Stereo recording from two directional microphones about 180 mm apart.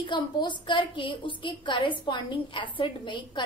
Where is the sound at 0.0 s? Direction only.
25° left (ahead or behind).